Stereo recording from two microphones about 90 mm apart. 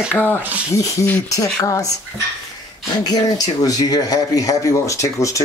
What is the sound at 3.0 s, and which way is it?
Speech, 50° left (ahead or behind).